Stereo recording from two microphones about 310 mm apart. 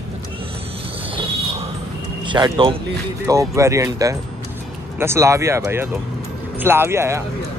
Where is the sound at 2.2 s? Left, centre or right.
Centre.